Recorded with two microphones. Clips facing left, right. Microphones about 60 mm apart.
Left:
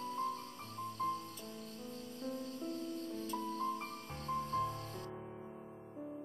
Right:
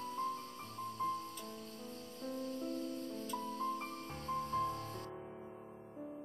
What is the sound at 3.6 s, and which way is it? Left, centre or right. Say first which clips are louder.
Music: even; centre.